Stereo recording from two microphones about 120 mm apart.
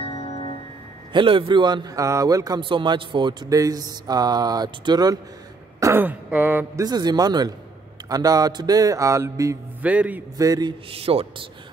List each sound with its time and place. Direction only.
0.0 s music: 55° left (ahead or behind)
1.1 s a man's voice: 45° right (ahead or behind)
5.8 s throat clearing: 20° right (ahead or behind)
6.8 s a man's voice: 35° right (ahead or behind)
9.8 s a man's voice: 10° right (ahead or behind)
10.3 s a man's voice: 30° right (ahead or behind)
10.9 s speech: 55° right (ahead or behind)